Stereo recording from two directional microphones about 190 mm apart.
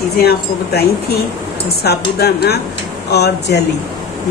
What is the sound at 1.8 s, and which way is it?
Speech, 60° left (ahead or behind).